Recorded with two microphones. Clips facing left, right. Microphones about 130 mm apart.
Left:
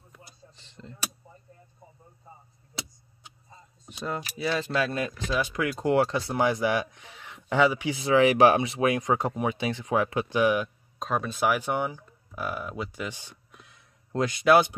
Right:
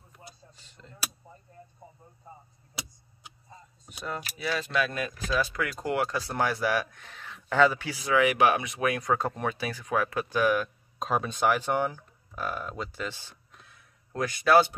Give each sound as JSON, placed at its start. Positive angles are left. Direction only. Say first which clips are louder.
{"t": 3.9, "sound": "speech", "louder": "left 3 dB", "side_deg": 25}
{"t": 9.6, "sound": "speech", "louder": "left 3 dB", "side_deg": 25}
{"t": 11.0, "sound": "speech", "louder": "even", "side_deg": 0}